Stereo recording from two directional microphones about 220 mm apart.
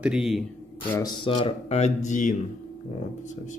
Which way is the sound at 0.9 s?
20° left (ahead or behind).